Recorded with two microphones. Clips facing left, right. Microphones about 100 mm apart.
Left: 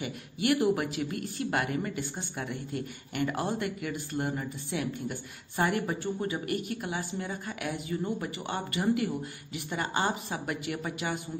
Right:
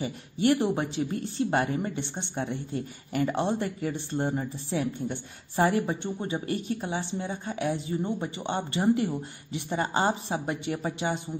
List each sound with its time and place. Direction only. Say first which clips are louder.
0.0 s speech: right 5 dB; 30° right (ahead or behind)